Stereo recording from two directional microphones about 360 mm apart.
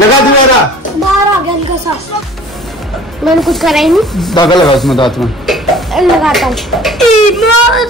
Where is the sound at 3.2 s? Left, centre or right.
Centre.